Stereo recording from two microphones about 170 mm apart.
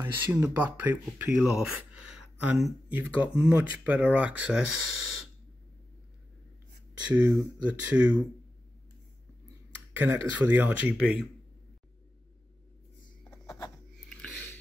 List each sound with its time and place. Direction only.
0.0 s speech: 10° right (ahead or behind)
7.1 s speech: 10° right (ahead or behind)
10.0 s speech: 10° right (ahead or behind)
14.0 s a sound: 5° left (ahead or behind)